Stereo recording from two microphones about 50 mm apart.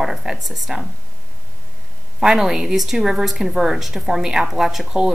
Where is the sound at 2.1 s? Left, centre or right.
Centre.